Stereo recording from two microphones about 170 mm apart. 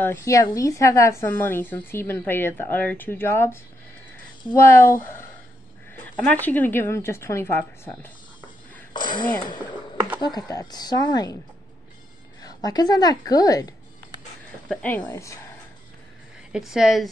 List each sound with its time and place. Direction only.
0.0 s a woman's voice: 15° left (ahead or behind)
4.6 s a woman's voice: 15° left (ahead or behind)
6.1 s a woman's voice: 10° left (ahead or behind)
8.9 s a woman's voice: 25° left (ahead or behind)
12.4 s a woman's voice: 20° left (ahead or behind)
14.7 s a woman's voice: 10° left (ahead or behind)
16.5 s a woman's voice: 5° right (ahead or behind)